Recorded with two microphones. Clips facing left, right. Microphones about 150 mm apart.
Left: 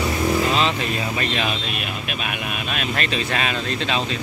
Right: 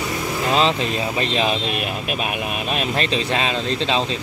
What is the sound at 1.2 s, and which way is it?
Speech, 30° right (ahead or behind).